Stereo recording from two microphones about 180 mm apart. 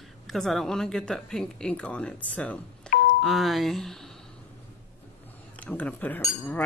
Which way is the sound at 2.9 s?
5° left (ahead or behind).